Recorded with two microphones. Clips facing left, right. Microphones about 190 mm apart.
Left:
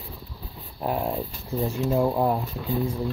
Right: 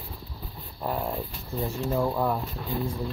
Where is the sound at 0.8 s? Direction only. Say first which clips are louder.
Left 3 dB; 15° left (ahead or behind).